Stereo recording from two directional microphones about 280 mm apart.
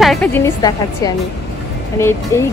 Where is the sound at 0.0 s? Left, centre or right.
Centre.